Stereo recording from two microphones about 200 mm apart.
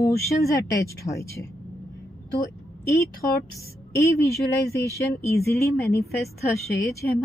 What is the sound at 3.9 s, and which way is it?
Speech, 15° left (ahead or behind).